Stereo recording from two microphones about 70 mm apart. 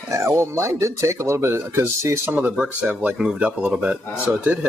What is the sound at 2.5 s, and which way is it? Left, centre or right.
Speech, centre.